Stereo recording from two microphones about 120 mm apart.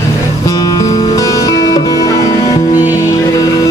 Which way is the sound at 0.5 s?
30° left (ahead or behind).